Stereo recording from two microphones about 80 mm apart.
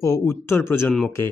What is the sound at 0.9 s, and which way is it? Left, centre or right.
Speech, centre.